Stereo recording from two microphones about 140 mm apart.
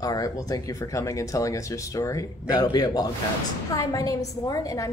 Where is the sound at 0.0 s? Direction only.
25° left (ahead or behind).